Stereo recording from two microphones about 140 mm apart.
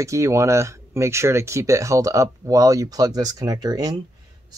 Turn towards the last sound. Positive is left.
turn(degrees=-25)  # may be behind; listen again after turning